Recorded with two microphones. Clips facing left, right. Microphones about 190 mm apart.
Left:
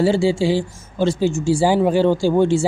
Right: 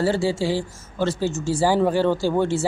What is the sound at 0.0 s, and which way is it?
Speech, 15° left (ahead or behind).